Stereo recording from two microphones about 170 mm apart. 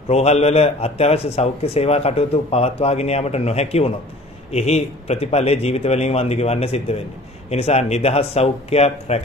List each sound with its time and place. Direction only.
0.1 s a man's voice: 40° left (ahead or behind)